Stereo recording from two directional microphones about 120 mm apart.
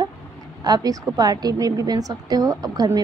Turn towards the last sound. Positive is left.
turn(degrees=-35)  # may be behind; listen again after turning